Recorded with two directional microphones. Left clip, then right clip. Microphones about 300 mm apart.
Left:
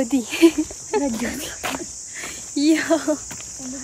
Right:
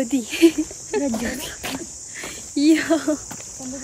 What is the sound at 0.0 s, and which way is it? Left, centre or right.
Speech, centre.